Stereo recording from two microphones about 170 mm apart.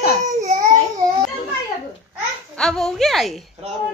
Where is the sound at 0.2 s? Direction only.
45° right (ahead or behind).